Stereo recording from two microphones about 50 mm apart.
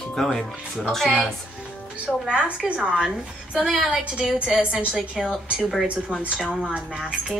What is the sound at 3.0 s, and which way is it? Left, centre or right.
A woman's voice, centre.